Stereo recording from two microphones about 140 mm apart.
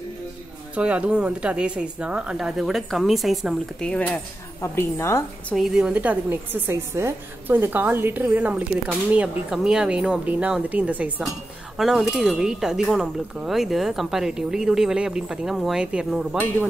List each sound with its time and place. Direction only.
0.7 s speech: 10° right (ahead or behind); by 4.2 s 5° left (ahead or behind)
4.6 s a woman's voice: 20° left (ahead or behind)
5.5 s a woman's voice: 5° right (ahead or behind)